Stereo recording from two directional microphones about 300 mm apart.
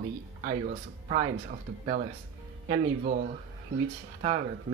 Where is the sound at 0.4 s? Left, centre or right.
Right.